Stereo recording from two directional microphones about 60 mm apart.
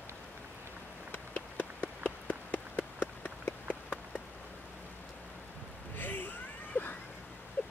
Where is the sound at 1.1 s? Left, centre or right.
Left.